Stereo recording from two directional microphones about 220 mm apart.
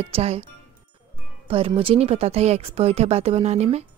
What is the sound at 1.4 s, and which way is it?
Speech, 25° right (ahead or behind).